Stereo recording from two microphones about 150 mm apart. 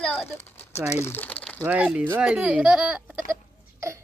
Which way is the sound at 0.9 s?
15° left (ahead or behind).